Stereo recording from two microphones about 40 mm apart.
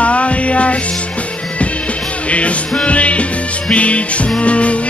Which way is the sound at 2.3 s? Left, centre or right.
Left.